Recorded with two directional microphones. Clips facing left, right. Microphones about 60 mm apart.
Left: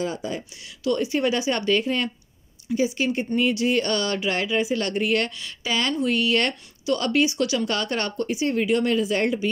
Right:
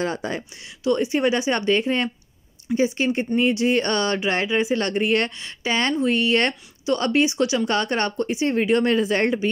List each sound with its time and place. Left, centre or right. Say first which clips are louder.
0.0 s speech: right 2 dB; right
0.8 s speech: right 2 dB; right